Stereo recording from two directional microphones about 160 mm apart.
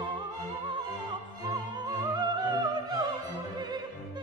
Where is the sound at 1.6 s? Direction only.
25° right (ahead or behind).